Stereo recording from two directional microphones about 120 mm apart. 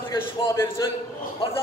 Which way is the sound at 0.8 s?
35° left (ahead or behind).